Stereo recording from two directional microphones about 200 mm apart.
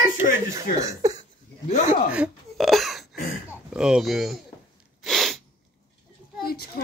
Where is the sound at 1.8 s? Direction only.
5° right (ahead or behind).